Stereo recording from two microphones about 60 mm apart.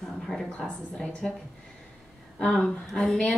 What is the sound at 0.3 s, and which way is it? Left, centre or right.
Speech, centre.